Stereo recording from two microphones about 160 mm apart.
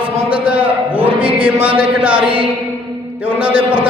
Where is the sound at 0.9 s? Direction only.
35° right (ahead or behind).